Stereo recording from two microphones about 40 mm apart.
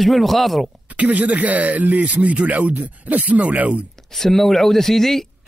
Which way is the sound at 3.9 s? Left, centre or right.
Centre.